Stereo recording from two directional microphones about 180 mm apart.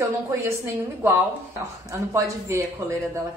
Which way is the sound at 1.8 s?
15° right (ahead or behind).